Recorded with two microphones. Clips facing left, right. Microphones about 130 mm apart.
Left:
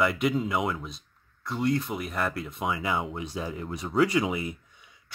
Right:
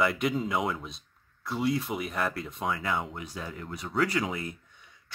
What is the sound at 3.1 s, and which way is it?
Speech, 20° left (ahead or behind).